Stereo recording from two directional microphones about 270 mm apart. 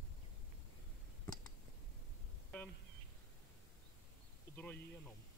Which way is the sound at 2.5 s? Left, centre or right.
Centre.